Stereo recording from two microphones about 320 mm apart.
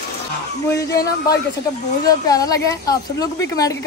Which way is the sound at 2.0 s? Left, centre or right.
Centre.